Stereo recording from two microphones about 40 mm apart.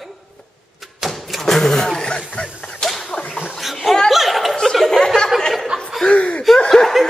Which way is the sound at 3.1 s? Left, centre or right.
Left.